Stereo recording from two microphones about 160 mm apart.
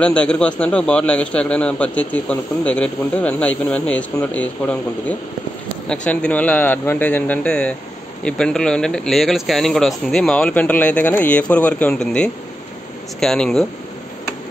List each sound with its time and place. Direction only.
0.0 s a man's voice: 5° left (ahead or behind)